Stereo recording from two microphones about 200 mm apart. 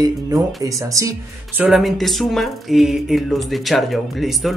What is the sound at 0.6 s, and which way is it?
Speech, 15° right (ahead or behind).